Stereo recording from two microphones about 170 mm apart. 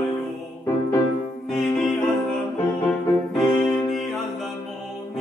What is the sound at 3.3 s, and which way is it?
Music, centre (ahead or behind).